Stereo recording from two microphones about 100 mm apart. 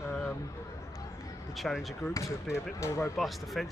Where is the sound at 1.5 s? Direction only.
Centre (ahead or behind).